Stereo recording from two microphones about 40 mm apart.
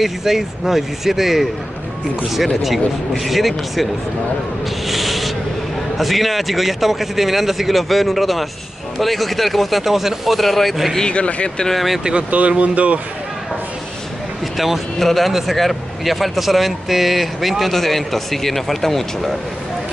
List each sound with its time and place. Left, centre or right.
0.0 s a man's voice: centre
4.8 s a sound: centre
5.9 s a man's voice: centre
11.0 s speech: left
11.7 s a man's voice: centre
12.2 s speech: right
15.0 s a man's voice: centre